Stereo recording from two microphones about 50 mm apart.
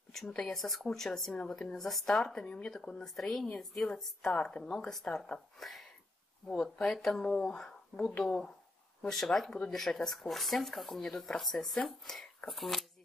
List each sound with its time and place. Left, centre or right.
0.1 s a woman's voice: centre
3.1 s speech: centre
5.6 s speech: centre